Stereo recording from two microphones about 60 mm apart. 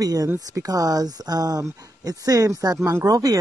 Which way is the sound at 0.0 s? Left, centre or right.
Right.